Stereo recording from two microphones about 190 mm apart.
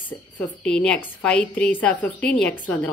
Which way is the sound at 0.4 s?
5° left (ahead or behind).